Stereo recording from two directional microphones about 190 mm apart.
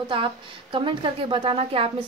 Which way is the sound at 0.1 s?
25° right (ahead or behind).